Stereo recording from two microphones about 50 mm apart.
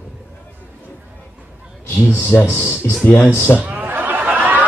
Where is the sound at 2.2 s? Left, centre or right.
Left.